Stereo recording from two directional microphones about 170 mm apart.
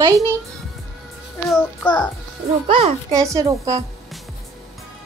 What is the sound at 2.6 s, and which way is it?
Speech, 35° right (ahead or behind).